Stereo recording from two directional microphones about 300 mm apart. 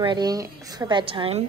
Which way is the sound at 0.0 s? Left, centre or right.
Centre.